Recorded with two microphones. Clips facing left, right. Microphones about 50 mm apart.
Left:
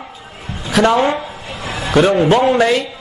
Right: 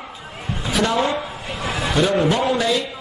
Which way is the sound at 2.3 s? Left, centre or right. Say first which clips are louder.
Left 7 dB; left.